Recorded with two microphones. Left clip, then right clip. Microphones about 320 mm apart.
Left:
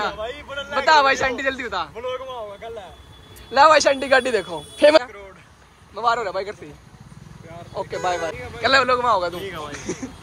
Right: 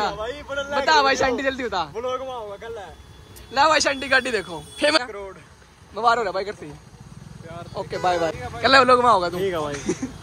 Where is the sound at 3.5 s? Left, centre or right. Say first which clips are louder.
Left 5 dB; centre.